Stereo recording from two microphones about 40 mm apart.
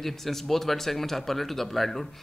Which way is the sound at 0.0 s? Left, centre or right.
Centre.